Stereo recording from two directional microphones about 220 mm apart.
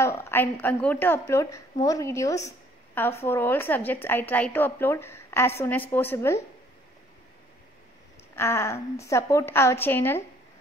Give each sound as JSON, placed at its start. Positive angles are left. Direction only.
{"t": 0.0, "sound": "a woman's voice", "side_deg": 10}
{"t": 8.4, "sound": "a woman's voice", "side_deg": 10}